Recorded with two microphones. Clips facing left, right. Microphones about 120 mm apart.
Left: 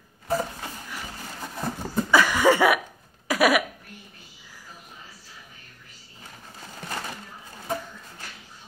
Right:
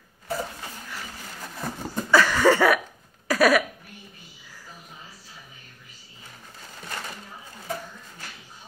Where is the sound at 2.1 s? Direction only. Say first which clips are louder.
Right 1 dB; 15° left (ahead or behind).